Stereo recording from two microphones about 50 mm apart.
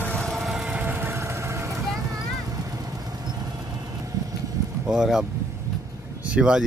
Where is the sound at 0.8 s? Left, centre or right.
Right.